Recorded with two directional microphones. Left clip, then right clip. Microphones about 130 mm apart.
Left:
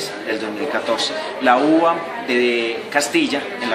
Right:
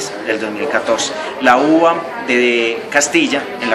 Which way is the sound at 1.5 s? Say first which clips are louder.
Right 4 dB; 20° right (ahead or behind).